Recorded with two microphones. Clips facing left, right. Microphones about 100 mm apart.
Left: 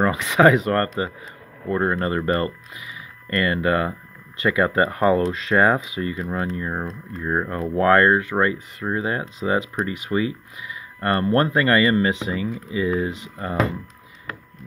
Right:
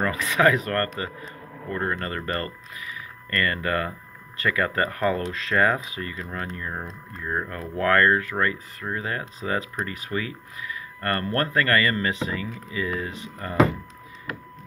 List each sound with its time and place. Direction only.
0.0 s speech: 25° left (ahead or behind)